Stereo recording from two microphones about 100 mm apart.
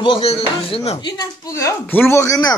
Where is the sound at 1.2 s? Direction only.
35° left (ahead or behind).